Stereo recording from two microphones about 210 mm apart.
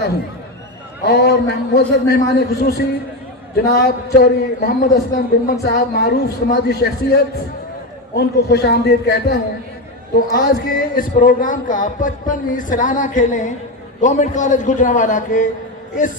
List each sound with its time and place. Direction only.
1.0 s a man's voice: 50° left (ahead or behind)
5.7 s a man's voice: 50° left (ahead or behind)
8.2 s a man's voice: 50° left (ahead or behind)